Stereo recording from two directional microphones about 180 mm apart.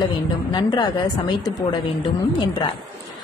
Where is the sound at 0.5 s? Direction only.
25° left (ahead or behind).